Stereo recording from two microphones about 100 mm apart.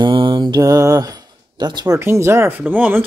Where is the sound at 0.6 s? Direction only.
35° right (ahead or behind).